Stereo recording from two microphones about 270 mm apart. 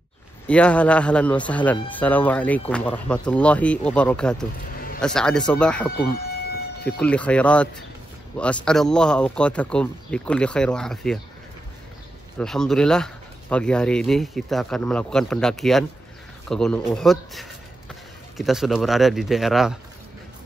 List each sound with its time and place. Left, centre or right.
0.5 s speech: centre
7.0 s speech: centre
12.4 s speech: centre